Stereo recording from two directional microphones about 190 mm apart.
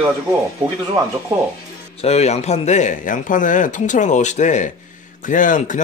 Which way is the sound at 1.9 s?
35° left (ahead or behind).